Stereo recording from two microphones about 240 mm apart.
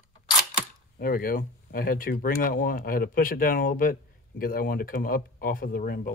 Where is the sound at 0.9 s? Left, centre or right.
Left.